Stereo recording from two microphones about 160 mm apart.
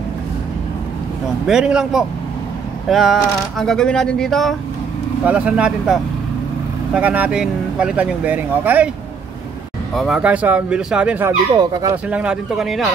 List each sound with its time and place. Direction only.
1.5 s speech: 5° right (ahead or behind)
9.9 s speech: 5° right (ahead or behind)
11.5 s speech: 25° right (ahead or behind)
12.1 s speech: 5° right (ahead or behind)